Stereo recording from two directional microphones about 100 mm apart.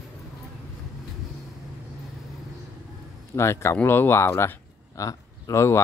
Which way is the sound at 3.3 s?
30° left (ahead or behind).